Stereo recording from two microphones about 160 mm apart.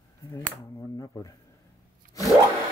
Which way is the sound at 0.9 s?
20° left (ahead or behind).